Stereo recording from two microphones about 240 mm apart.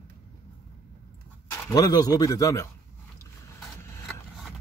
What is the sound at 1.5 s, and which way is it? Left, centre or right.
Speech, centre.